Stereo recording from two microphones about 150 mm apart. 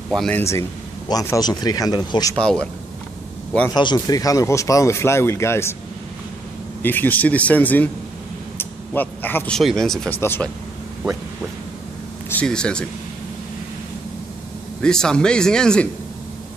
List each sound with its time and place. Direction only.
0.1 s speech: 5° left (ahead or behind)
0.4 s speech: 20° left (ahead or behind)
2.3 s speech: 5° left (ahead or behind)
3.7 s speech: 30° left (ahead or behind)
6.8 s a man's voice: 10° left (ahead or behind)
8.5 s a sound: 10° left (ahead or behind)
9.6 s a man's voice: centre (ahead or behind)
12.3 s speech: 10° left (ahead or behind)
14.8 s speech: 5° left (ahead or behind)